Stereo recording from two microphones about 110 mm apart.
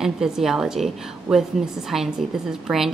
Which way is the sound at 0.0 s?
5° right (ahead or behind).